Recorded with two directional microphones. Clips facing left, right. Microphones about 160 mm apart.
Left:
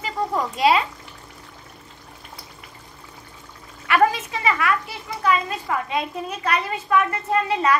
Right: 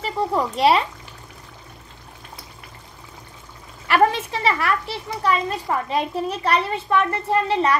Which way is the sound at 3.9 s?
30° right (ahead or behind).